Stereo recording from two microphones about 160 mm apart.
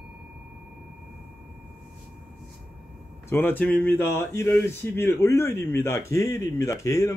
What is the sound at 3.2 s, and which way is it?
Speech, 15° left (ahead or behind).